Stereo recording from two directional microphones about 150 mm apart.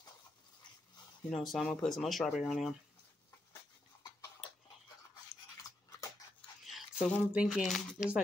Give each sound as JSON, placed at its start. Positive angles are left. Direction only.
{"t": 1.3, "sound": "speech", "side_deg": 0}
{"t": 5.6, "sound": "dog", "side_deg": 25}
{"t": 6.6, "sound": "a sound", "side_deg": 0}
{"t": 7.4, "sound": "speech", "side_deg": 0}